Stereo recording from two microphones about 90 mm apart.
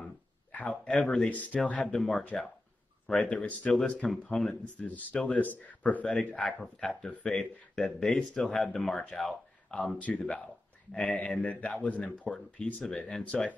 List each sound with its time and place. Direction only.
0.5 s speech: 15° left (ahead or behind)
6.8 s speech: 5° left (ahead or behind)